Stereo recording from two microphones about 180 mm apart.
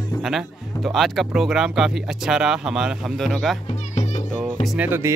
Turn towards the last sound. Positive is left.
turn(degrees=-10)  # may be behind; listen again after turning